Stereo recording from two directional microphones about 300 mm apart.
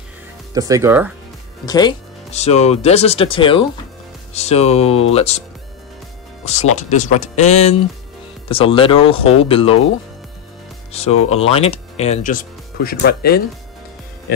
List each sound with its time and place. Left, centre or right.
0.6 s speech: centre
1.7 s speech: centre
6.4 s speech: left
10.9 s speech: left
11.1 s speech: left
11.4 s speech: centre